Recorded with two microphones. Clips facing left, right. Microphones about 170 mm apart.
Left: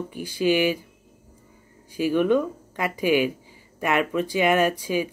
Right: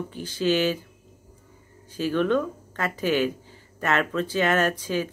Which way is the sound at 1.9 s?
10° left (ahead or behind).